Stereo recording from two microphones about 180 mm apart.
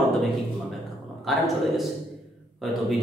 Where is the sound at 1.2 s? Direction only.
Centre (ahead or behind).